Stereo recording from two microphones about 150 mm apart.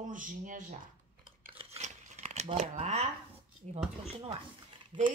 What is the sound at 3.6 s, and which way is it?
Speech, 50° right (ahead or behind).